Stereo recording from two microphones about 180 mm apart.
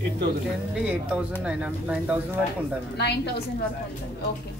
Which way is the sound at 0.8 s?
5° right (ahead or behind).